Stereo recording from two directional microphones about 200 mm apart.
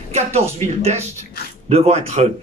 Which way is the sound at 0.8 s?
30° right (ahead or behind).